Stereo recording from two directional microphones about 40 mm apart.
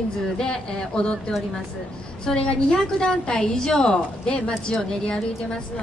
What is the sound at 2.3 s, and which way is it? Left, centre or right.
A woman's voice, left.